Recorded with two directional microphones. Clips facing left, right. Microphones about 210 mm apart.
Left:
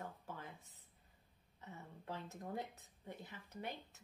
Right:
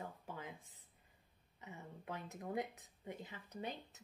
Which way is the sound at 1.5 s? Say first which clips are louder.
Right 2 dB; 15° right (ahead or behind).